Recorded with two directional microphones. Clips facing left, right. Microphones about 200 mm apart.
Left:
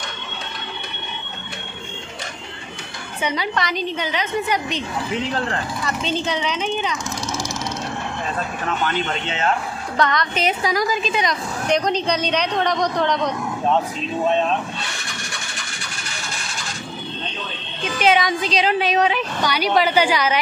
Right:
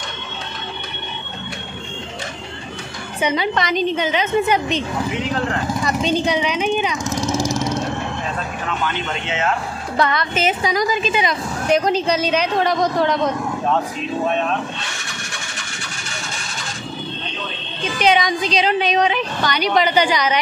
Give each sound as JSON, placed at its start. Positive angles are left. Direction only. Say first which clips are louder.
{"t": 3.2, "sound": "a woman's voice", "louder": "right 4 dB", "side_deg": -20}
{"t": 5.9, "sound": "speech", "louder": "right 4 dB", "side_deg": -15}
{"t": 8.8, "sound": "speech", "louder": "left 2 dB", "side_deg": 35}
{"t": 9.9, "sound": "a woman's voice", "louder": "right 1 dB", "side_deg": -5}
{"t": 17.9, "sound": "a woman's voice", "louder": "right 1 dB", "side_deg": 5}